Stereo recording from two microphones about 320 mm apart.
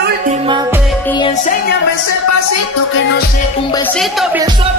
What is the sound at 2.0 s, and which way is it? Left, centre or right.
Speech, left.